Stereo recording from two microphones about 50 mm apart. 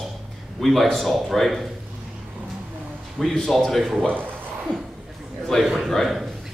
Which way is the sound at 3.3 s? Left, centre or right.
Centre.